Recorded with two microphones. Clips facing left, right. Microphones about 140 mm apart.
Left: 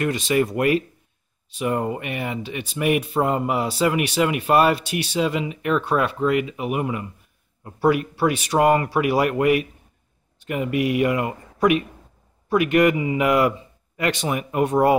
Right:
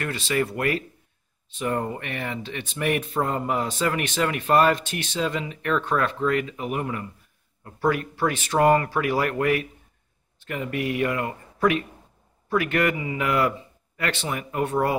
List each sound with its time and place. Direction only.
0.0 s speech: 15° left (ahead or behind)